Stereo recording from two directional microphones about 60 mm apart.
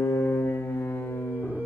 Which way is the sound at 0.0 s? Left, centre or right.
Left.